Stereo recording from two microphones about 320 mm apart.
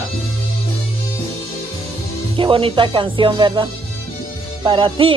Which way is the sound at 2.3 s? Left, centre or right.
Centre.